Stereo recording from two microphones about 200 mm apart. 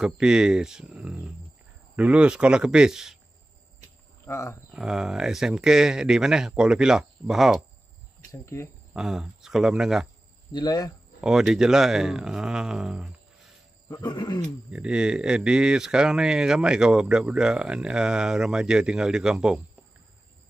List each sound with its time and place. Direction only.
0.0 s speech: 5° right (ahead or behind)
4.3 s speech: 15° left (ahead or behind)
4.7 s speech: 5° right (ahead or behind)
8.3 s speech: 15° left (ahead or behind)
8.9 s speech: 5° right (ahead or behind)
10.5 s speech: 20° left (ahead or behind)
11.1 s speech: centre (ahead or behind)
13.8 s speech: 20° left (ahead or behind)
14.7 s speech: 5° right (ahead or behind)